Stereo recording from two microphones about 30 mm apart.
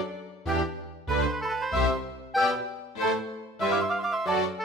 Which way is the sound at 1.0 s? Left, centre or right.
Centre.